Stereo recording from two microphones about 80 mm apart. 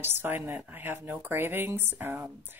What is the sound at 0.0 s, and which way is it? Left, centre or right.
Speech, right.